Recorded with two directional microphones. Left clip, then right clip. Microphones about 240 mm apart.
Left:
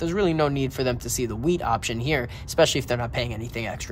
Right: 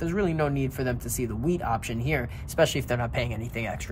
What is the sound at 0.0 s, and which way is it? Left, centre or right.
Speech, centre.